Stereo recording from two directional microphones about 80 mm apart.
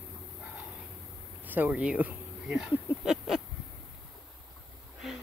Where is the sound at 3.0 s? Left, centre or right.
Centre.